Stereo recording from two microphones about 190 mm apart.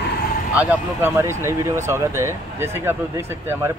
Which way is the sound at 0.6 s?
10° right (ahead or behind).